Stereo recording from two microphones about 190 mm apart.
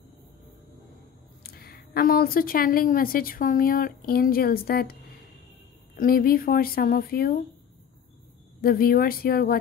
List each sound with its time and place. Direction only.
1.4 s a woman's voice: 55° left (ahead or behind)
5.9 s a woman's voice: 50° left (ahead or behind)
8.5 s a woman's voice: 50° left (ahead or behind)